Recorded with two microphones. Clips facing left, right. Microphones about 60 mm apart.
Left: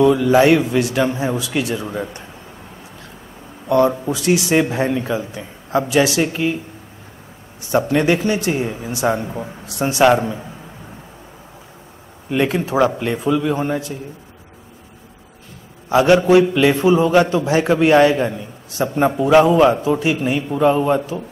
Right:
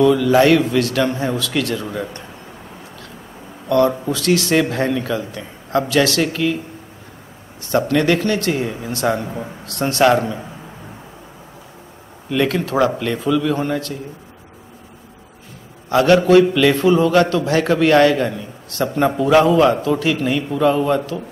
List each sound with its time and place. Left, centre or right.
0.0 s a man's voice: centre
3.6 s a man's voice: centre
7.6 s a man's voice: centre
12.3 s a man's voice: centre
15.9 s a man's voice: centre